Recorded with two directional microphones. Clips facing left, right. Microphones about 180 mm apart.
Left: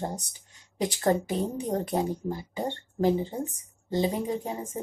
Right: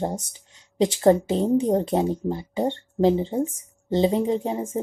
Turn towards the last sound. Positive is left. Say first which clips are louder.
# right 7 dB
turn(degrees=-25)  # may be behind; listen again after turning